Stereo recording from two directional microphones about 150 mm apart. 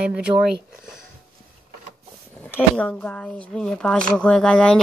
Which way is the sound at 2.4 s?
5° left (ahead or behind).